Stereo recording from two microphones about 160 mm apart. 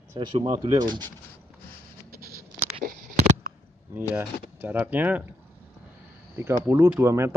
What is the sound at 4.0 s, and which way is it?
Speech, 10° right (ahead or behind).